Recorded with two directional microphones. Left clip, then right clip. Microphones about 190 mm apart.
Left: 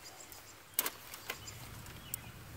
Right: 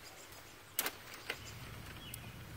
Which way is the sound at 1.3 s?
60° left (ahead or behind).